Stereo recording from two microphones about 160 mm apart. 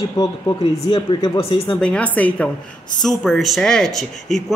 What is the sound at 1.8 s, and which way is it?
Speech, 10° left (ahead or behind).